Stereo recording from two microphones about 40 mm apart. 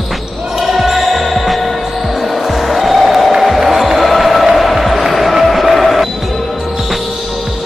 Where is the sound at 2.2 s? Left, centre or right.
Centre.